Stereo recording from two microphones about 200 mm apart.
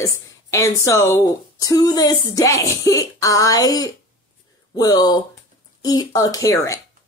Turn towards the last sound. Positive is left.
turn(degrees=15)  # may be behind; listen again after turning